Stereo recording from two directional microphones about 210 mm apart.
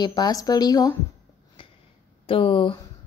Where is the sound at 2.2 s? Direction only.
25° left (ahead or behind).